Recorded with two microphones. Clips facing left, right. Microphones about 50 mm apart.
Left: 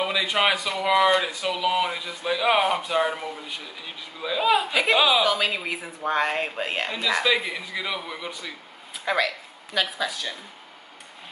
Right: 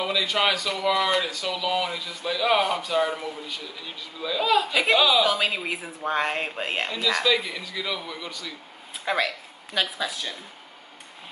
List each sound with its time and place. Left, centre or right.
0.0 s speech: centre
6.9 s speech: centre
9.0 s speech: centre